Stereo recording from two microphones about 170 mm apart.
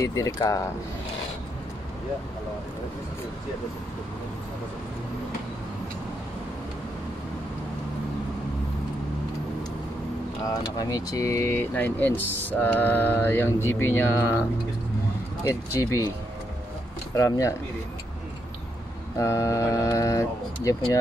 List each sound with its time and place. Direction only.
0.0 s speech: 20° left (ahead or behind)
10.4 s speech: 20° left (ahead or behind)
15.8 s speech: 20° left (ahead or behind)
17.1 s speech: 20° left (ahead or behind)
19.1 s speech: 15° left (ahead or behind)